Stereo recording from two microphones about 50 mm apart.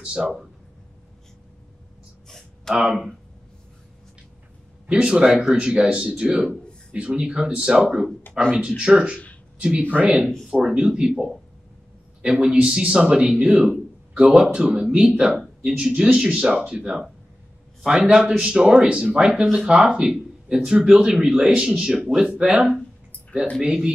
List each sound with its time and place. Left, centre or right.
0.0 s speech: right
2.2 s a sound: centre
2.7 s speech: centre
4.9 s speech: centre
8.3 s speech: centre
8.6 s speech: centre
12.3 s speech: centre
14.1 s speech: centre